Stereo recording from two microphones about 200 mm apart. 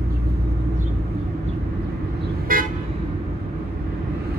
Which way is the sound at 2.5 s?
45° right (ahead or behind).